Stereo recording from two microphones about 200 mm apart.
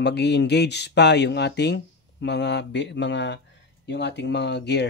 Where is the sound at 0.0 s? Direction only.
55° left (ahead or behind).